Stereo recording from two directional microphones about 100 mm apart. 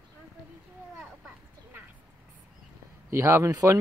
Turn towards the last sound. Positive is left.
turn(degrees=-30)  # may be behind; listen again after turning